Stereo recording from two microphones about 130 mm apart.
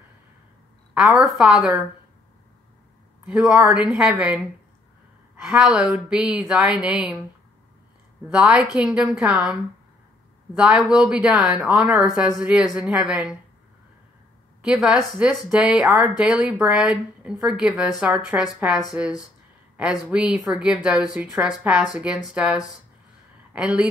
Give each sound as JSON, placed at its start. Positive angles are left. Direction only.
{"t": 0.9, "sound": "speech", "side_deg": -5}
{"t": 3.3, "sound": "speech", "side_deg": -5}
{"t": 5.4, "sound": "speech", "side_deg": -5}
{"t": 8.3, "sound": "speech", "side_deg": -5}
{"t": 14.6, "sound": "speech", "side_deg": -5}